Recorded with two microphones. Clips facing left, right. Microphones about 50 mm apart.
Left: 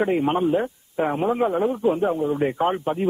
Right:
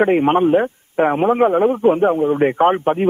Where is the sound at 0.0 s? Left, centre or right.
Right.